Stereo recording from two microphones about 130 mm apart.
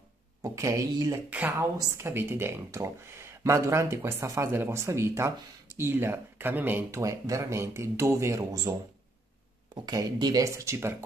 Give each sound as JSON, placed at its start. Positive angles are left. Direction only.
{"t": 0.4, "sound": "speech", "side_deg": -25}
{"t": 1.3, "sound": "speech", "side_deg": -15}
{"t": 9.8, "sound": "speech", "side_deg": -30}